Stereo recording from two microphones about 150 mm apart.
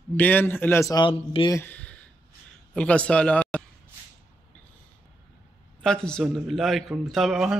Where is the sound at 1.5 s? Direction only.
10° left (ahead or behind).